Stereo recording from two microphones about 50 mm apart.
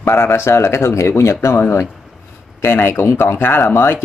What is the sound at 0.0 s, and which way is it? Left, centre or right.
Speech, left.